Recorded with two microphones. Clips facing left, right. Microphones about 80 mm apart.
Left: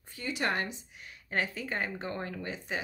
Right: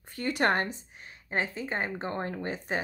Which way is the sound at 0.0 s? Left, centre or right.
Right.